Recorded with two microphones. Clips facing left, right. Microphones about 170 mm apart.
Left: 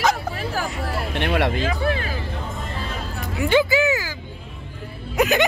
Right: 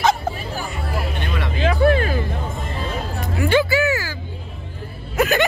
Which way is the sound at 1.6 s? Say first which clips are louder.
Right 6 dB; 50° right (ahead or behind).